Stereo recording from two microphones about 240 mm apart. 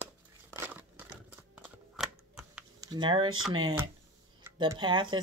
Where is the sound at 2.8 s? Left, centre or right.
Centre.